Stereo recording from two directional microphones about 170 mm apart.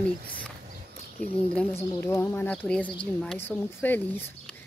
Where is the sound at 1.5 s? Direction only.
15° left (ahead or behind).